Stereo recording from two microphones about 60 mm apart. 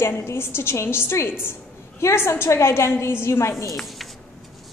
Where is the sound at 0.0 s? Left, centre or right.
Left.